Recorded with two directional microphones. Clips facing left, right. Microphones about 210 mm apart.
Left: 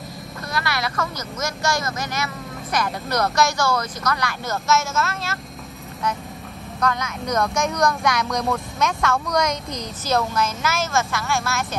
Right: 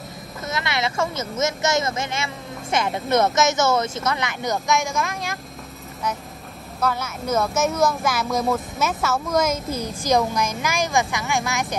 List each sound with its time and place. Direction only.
0.5 s speech: 20° right (ahead or behind)
6.8 s speech: 5° right (ahead or behind)